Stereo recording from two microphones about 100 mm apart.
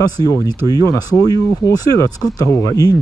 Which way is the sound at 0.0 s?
35° left (ahead or behind).